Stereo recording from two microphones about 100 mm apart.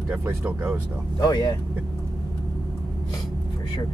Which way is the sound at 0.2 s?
30° right (ahead or behind).